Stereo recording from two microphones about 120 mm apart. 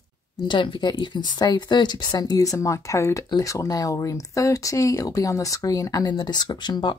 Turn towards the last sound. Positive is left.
turn(degrees=40)  # may be behind; listen again after turning